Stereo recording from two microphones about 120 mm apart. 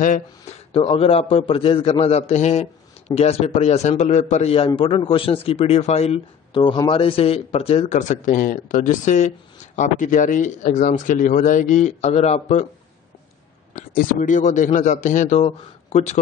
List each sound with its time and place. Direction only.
0.0 s speech: 90° left
0.7 s speech: 55° left (ahead or behind)
4.6 s a man's voice: 45° left (ahead or behind); by 6.2 s 65° left (ahead or behind)
6.5 s speech: 40° left (ahead or behind); by 12.6 s 70° left (ahead or behind)
14.2 s speech: 90° left; by 16.2 s 65° left (ahead or behind)